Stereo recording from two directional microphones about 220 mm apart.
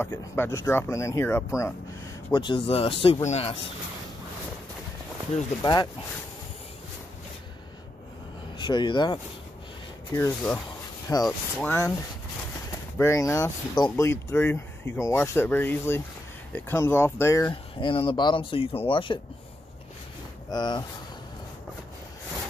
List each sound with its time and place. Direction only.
0.0 s speech: 10° left (ahead or behind); by 3.5 s 30° left (ahead or behind)
5.6 s speech: 20° left (ahead or behind)
8.5 s speech: 20° left (ahead or behind)
12.9 s speech: 10° left (ahead or behind)
20.4 s speech: 20° left (ahead or behind)